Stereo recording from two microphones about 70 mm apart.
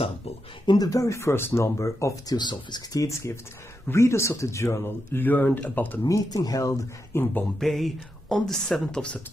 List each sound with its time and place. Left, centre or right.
0.7 s speech: left
2.2 s speech: left
3.0 s speech: left
6.0 s speech: left
7.1 s speech: left
7.6 s speech: centre